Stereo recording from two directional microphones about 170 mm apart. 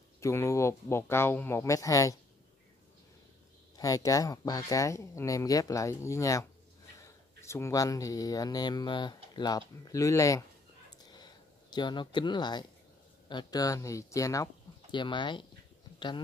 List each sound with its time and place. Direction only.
0.2 s speech: 15° left (ahead or behind)
3.7 s speech: 20° left (ahead or behind)
11.1 s a sound: 25° left (ahead or behind)
13.3 s speech: 25° left (ahead or behind)